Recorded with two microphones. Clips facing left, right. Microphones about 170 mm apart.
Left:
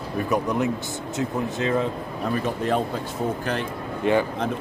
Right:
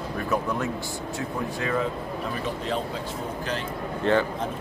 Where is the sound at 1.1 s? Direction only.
20° left (ahead or behind).